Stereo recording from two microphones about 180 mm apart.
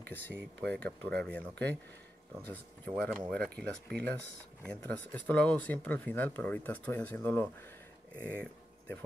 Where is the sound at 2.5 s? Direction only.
10° left (ahead or behind).